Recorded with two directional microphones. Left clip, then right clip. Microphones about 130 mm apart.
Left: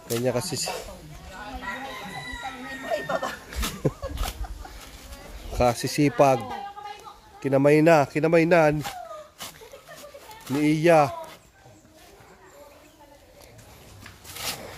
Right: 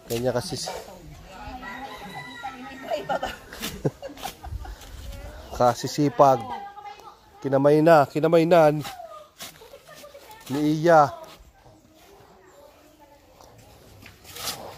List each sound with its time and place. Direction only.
0.1 s speech: centre (ahead or behind)
2.8 s music: 5° left (ahead or behind)
3.3 s a sound: centre (ahead or behind)
5.5 s speech: centre (ahead or behind)
7.8 s speech: 15° right (ahead or behind)
10.4 s speech: centre (ahead or behind)